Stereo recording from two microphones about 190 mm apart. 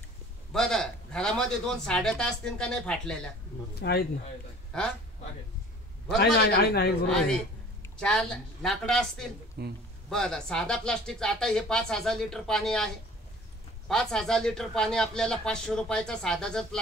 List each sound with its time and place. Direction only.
0.5 s a man's voice: centre (ahead or behind)
3.8 s a man's voice: 60° left (ahead or behind)
6.1 s a man's voice: 60° left (ahead or behind)
7.1 s a man's voice: 5° left (ahead or behind)
9.6 s speech: 55° right (ahead or behind)
10.0 s a man's voice: 5° left (ahead or behind)